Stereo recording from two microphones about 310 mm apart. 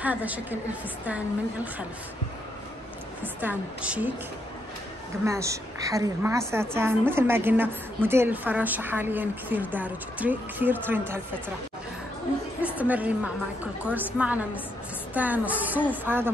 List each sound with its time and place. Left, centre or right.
0.0 s a woman's voice: centre
3.3 s a woman's voice: centre
5.2 s a woman's voice: centre
12.6 s a woman's voice: centre